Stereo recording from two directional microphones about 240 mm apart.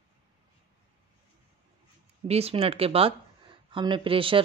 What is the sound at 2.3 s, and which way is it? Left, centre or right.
Speech, right.